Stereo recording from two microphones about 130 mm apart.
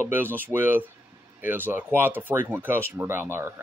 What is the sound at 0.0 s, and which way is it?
Speech, 15° right (ahead or behind).